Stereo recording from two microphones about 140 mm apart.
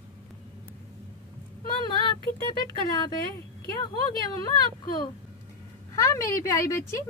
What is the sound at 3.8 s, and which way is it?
Speech, 30° left (ahead or behind).